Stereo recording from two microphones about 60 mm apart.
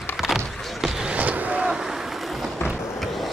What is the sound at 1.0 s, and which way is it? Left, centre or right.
Vehicle, right.